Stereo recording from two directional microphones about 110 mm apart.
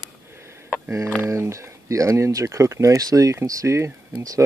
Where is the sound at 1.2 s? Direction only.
25° right (ahead or behind).